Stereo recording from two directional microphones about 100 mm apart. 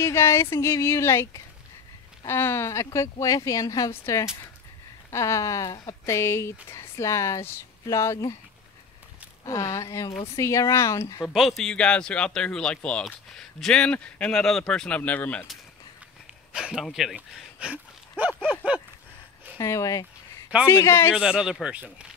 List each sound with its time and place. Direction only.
0.0 s speech: 25° left (ahead or behind)
9.4 s speech: 30° left (ahead or behind)
11.3 s speech: centre (ahead or behind)
16.5 s speech: 5° right (ahead or behind)
19.6 s speech: 30° left (ahead or behind)
21.1 s speech: 10° right (ahead or behind)